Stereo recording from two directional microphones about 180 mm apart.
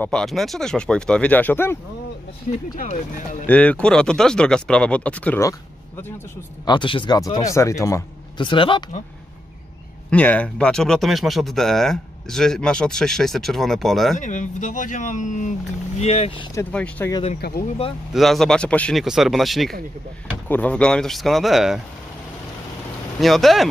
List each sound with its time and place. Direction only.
0.0 s speech: 5° left (ahead or behind)
2.7 s speech: 45° left (ahead or behind)
3.4 s speech: 5° left (ahead or behind)
6.6 s a man's voice: 25° left (ahead or behind)
10.0 s speech: 10° left (ahead or behind)
14.1 s speech: 45° left (ahead or behind)
16.5 s speech: 10° left (ahead or behind)
17.4 s speech: 55° left (ahead or behind)
18.1 s speech: centre (ahead or behind)
23.2 s speech: centre (ahead or behind)